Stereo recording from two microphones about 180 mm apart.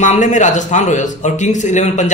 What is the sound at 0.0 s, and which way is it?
A man's voice, 40° left (ahead or behind).